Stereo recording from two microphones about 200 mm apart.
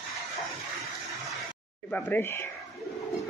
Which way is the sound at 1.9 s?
10° left (ahead or behind).